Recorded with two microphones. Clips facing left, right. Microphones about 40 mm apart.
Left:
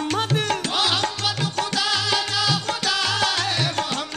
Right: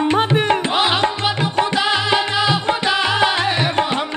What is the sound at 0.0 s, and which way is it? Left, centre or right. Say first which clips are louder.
Music: right 7 dB; right.